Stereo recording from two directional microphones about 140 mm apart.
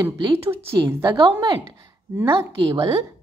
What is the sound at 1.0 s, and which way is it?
A woman's voice, 30° right (ahead or behind).